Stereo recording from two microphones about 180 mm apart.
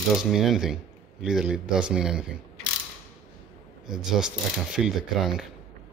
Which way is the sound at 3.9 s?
5° right (ahead or behind).